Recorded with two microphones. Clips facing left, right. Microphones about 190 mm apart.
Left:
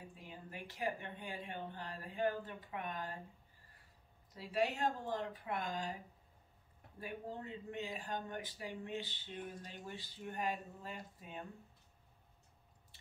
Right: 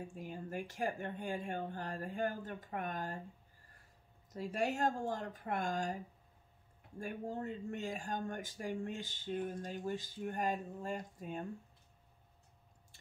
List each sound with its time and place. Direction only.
0.1 s speech: 45° right (ahead or behind)
4.3 s speech: 45° right (ahead or behind)
7.0 s speech: 45° right (ahead or behind)